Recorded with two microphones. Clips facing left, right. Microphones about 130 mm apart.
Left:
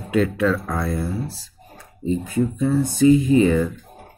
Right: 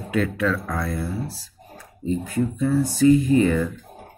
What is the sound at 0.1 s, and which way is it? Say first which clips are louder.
Speech: left 3 dB; 30° left (ahead or behind).